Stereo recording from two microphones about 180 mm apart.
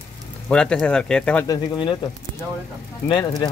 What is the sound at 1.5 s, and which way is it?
Speech, 25° left (ahead or behind).